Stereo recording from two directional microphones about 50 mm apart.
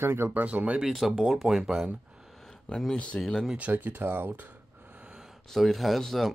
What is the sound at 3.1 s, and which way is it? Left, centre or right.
Speech, left.